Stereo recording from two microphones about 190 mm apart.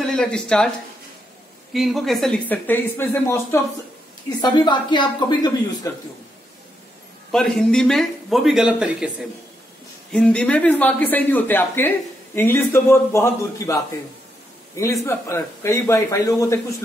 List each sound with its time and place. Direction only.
0.0 s speech: 5° left (ahead or behind)
1.7 s speech: centre (ahead or behind); by 6.0 s 15° left (ahead or behind)
7.2 s speech: centre (ahead or behind)
10.1 s speech: 5° left (ahead or behind)
14.8 s speech: 15° left (ahead or behind)